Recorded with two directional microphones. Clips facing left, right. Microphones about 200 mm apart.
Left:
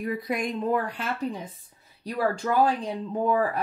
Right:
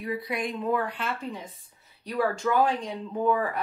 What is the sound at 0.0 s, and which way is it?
A woman's voice, 45° left (ahead or behind).